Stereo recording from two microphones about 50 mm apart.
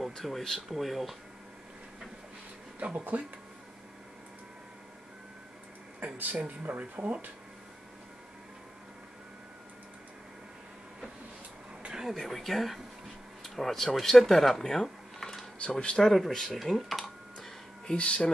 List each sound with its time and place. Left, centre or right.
0.1 s speech: centre
2.8 s speech: right
5.9 s speech: right
11.8 s a sound: centre
12.1 s speech: centre
16.0 s computer keyboard: centre
17.9 s speech: left